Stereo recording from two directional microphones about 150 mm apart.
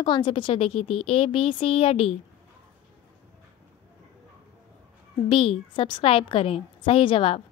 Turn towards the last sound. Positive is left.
turn(degrees=40)  # may be behind; listen again after turning